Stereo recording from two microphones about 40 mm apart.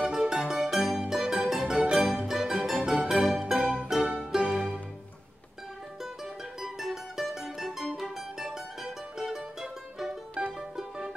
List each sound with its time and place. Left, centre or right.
0.1 s music: centre
0.7 s mandolin: centre
3.3 s music: centre
3.5 s music: right
6.6 s music: centre